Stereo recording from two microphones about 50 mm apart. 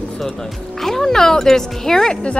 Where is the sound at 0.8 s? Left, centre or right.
Centre.